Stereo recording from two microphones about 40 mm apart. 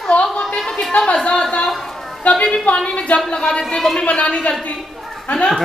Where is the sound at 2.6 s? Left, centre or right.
Left.